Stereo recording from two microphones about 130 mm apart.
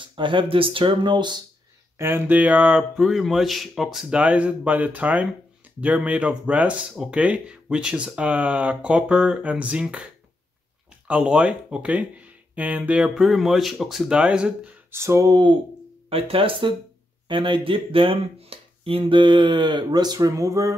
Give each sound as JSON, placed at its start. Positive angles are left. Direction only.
{"t": 0.0, "sound": "speech", "side_deg": -40}
{"t": 2.0, "sound": "speech", "side_deg": -20}
{"t": 11.1, "sound": "speech", "side_deg": -10}
{"t": 14.9, "sound": "a sound", "side_deg": -20}
{"t": 16.1, "sound": "speech", "side_deg": -45}